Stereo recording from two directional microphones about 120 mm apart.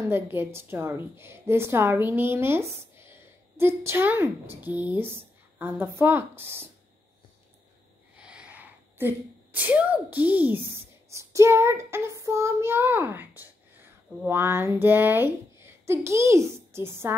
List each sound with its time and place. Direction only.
0.0 s a woman's voice: 20° right (ahead or behind)
8.2 s a sound: 10° right (ahead or behind)
11.1 s child singing: 25° right (ahead or behind)